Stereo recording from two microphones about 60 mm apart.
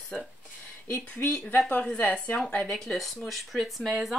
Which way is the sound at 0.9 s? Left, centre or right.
Left.